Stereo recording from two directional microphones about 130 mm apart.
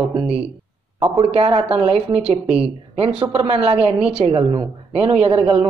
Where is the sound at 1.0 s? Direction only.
50° right (ahead or behind).